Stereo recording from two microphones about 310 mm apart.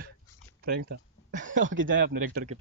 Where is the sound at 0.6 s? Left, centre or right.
Right.